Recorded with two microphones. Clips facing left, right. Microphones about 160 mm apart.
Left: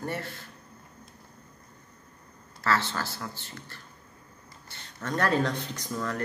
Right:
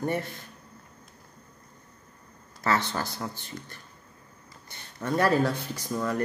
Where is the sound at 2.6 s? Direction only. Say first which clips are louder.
Right 1 dB; 15° right (ahead or behind).